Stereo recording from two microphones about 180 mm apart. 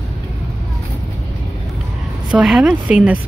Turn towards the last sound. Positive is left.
turn(degrees=-5)  # may be behind; listen again after turning